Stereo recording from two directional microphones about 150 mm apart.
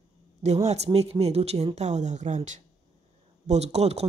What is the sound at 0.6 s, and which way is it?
A woman's voice, 45° right (ahead or behind).